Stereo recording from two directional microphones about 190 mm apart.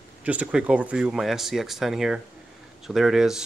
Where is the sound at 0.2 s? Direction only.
5° right (ahead or behind).